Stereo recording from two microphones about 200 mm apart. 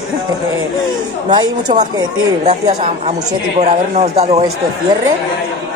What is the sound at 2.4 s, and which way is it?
Speech, 35° right (ahead or behind).